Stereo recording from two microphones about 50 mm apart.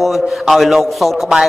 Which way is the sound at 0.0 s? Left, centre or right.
Centre.